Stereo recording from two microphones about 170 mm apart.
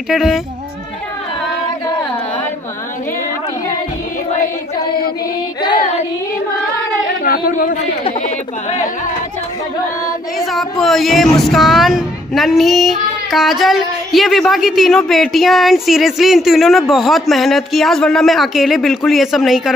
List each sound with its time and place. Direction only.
0.1 s speech: centre (ahead or behind)
7.2 s a sound: 55° left (ahead or behind)
10.4 s speech: centre (ahead or behind)